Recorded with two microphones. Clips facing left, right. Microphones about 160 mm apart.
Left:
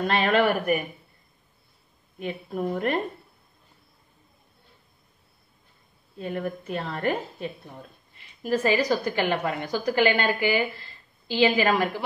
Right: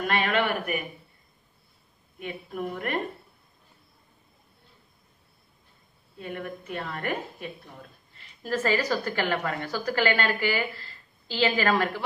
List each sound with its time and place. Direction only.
0.0 s a woman's voice: 35° left (ahead or behind)
2.1 s a woman's voice: 30° left (ahead or behind)
6.1 s a woman's voice: 35° left (ahead or behind)
8.4 s a woman's voice: 15° left (ahead or behind)